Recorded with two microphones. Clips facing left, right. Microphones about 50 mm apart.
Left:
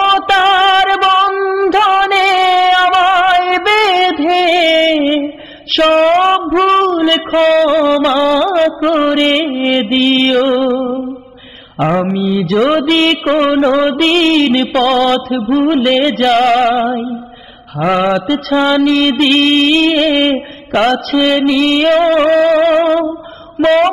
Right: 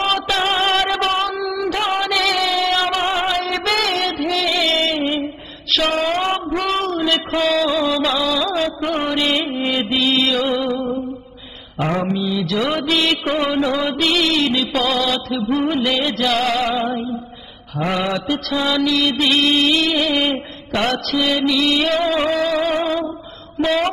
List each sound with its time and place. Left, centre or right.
0.0 s a sound: left
5.1 s female singing: left
11.8 s mantra: left
15.5 s music: left
17.7 s mantra: left